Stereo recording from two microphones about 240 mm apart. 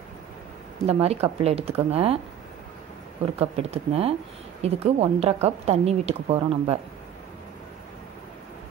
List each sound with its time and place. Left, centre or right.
0.8 s a woman's voice: right
3.3 s a woman's voice: right